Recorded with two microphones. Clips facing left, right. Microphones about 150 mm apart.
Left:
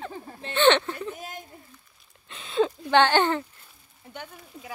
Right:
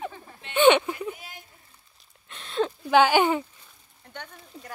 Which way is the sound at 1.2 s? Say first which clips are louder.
Left 7 dB; 45° left (ahead or behind).